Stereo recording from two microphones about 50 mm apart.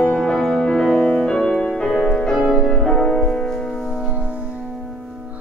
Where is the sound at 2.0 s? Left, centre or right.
Centre.